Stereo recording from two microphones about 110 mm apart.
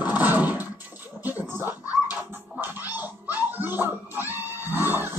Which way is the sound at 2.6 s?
15° right (ahead or behind).